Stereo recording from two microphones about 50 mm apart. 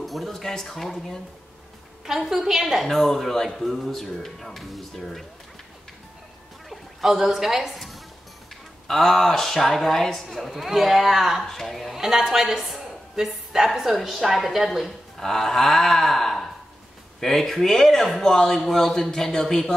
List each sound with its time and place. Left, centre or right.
0.0 s a man's voice: centre
2.0 s a woman's voice: centre
6.7 s a woman's voice: centre
12.0 s a woman's voice: centre